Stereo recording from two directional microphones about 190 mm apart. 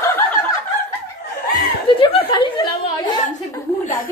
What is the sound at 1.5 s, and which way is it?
Chuckle, 25° left (ahead or behind).